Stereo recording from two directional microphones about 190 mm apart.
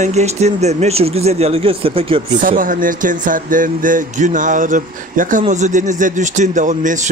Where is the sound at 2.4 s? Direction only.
45° right (ahead or behind).